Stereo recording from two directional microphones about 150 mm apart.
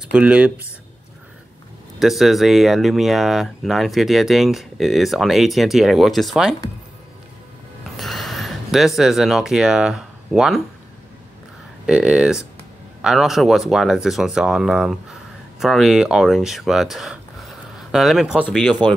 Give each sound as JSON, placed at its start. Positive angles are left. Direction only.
{"t": 0.1, "sound": "speech", "side_deg": -10}
{"t": 2.0, "sound": "speech", "side_deg": 0}
{"t": 8.0, "sound": "speech", "side_deg": 0}
{"t": 11.8, "sound": "speech", "side_deg": -5}
{"t": 18.8, "sound": "speech", "side_deg": -30}